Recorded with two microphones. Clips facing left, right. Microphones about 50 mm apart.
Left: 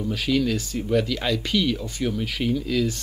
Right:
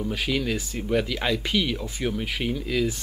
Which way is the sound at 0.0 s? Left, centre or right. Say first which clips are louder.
Left 3 dB; centre.